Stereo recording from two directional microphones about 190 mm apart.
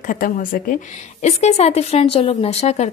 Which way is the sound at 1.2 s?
35° left (ahead or behind).